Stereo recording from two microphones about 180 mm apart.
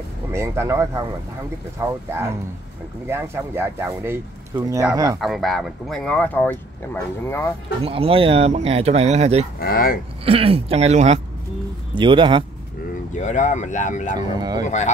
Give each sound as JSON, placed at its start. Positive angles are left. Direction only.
{"t": 0.3, "sound": "speech", "side_deg": -15}
{"t": 5.2, "sound": "speech", "side_deg": 0}
{"t": 7.8, "sound": "speech", "side_deg": -30}
{"t": 9.6, "sound": "speech", "side_deg": 55}
{"t": 10.2, "sound": "speech", "side_deg": -30}
{"t": 11.9, "sound": "speech", "side_deg": -25}
{"t": 13.2, "sound": "speech", "side_deg": 40}
{"t": 14.3, "sound": "speech", "side_deg": -20}
{"t": 14.6, "sound": "speech", "side_deg": 40}